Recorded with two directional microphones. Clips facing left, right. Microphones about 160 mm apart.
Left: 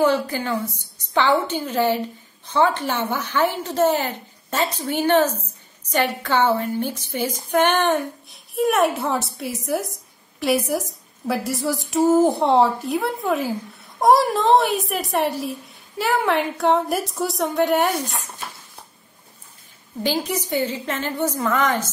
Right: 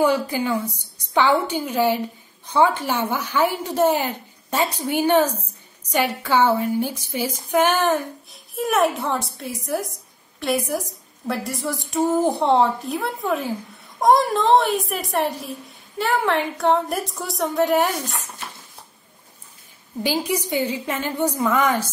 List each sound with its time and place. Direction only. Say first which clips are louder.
0.0 s a woman's voice: even; 10° right (ahead or behind)
20.0 s a woman's voice: right 1 dB; 10° right (ahead or behind)